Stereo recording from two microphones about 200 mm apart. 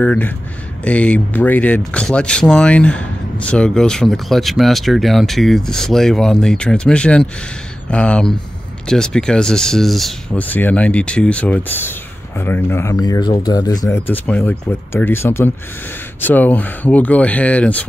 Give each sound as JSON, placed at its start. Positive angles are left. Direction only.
{"t": 0.0, "sound": "speech", "side_deg": 5}